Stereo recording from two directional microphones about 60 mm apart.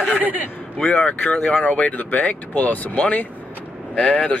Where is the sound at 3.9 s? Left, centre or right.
Centre.